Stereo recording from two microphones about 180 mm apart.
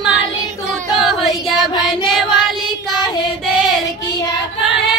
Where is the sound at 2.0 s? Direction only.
Centre (ahead or behind).